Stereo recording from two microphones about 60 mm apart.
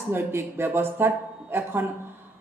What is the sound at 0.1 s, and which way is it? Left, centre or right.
A man's voice, right.